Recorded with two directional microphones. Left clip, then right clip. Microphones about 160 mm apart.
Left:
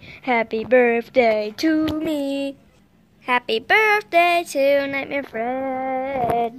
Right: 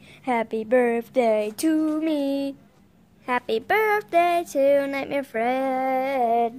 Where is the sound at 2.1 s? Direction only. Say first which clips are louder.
Left 1 dB; 15° left (ahead or behind).